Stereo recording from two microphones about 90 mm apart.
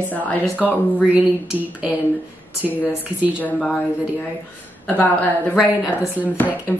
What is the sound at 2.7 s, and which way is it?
Speech, 20° left (ahead or behind).